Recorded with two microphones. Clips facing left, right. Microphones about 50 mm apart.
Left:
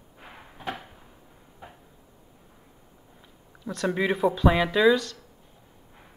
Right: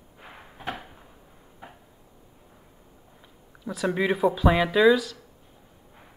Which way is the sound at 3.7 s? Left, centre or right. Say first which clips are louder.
Right 1 dB; centre.